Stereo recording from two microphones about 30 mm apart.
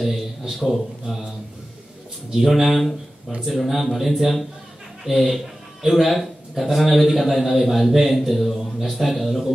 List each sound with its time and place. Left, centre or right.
0.0 s a man's voice: centre
2.3 s a man's voice: centre
2.7 s a man's voice: centre